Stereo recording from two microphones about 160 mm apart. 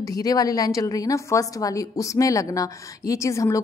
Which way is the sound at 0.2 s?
25° left (ahead or behind).